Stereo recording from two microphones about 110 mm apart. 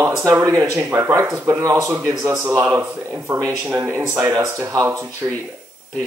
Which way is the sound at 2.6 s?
15° right (ahead or behind).